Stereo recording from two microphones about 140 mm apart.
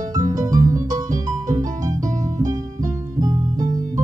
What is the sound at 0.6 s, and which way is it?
Music, 65° right (ahead or behind).